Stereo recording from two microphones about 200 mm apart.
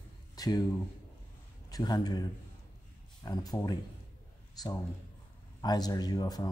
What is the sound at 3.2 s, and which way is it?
Speech, 20° left (ahead or behind).